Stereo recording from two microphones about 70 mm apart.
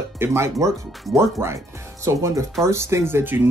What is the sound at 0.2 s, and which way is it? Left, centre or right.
Speech, right.